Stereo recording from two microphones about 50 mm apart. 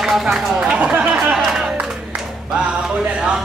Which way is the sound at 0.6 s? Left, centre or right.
Right.